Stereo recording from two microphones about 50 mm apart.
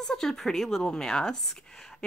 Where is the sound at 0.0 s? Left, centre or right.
Centre.